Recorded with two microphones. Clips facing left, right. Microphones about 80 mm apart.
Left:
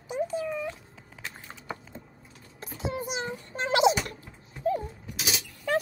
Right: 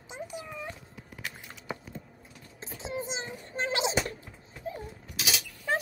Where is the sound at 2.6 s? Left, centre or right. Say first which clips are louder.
Left 3 dB; right.